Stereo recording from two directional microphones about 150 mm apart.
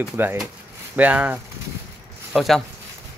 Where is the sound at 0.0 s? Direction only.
15° right (ahead or behind).